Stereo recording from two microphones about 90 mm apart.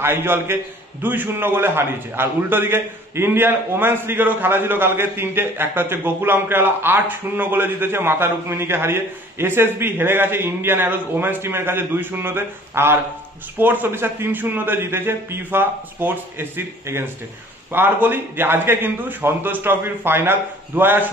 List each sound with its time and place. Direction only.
0.0 s a man's voice: 25° right (ahead or behind)